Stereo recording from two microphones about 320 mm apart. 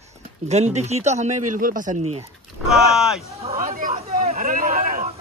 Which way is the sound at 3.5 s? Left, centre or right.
Right.